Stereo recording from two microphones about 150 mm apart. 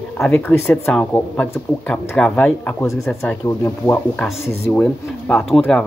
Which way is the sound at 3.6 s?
15° left (ahead or behind).